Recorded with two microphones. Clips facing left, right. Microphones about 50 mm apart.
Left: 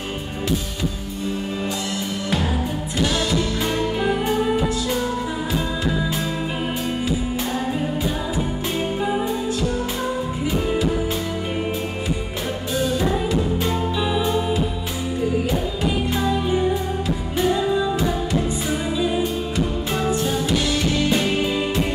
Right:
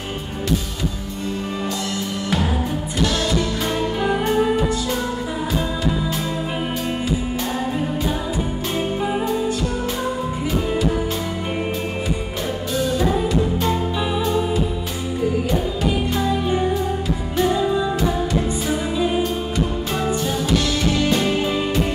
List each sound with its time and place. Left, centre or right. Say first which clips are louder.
3.2 s music: right 1 dB; centre
12.7 s music: right 1 dB; centre
13.9 s music: even; centre
16.2 s music: left 1 dB; centre
18.9 s music: right 2 dB; centre
20.2 s music: right 1 dB; centre